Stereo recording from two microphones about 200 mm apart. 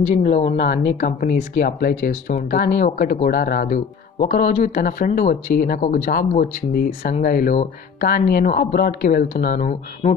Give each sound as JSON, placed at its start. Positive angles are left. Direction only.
{"t": 0.1, "sound": "speech", "side_deg": 35}